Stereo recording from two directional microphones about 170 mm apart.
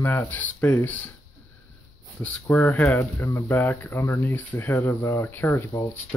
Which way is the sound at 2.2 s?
10° left (ahead or behind).